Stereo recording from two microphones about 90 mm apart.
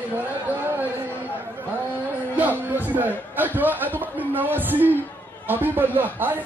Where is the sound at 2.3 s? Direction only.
20° right (ahead or behind).